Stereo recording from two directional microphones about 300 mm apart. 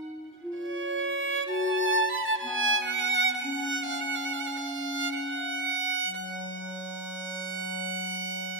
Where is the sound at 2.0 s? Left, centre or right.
Right.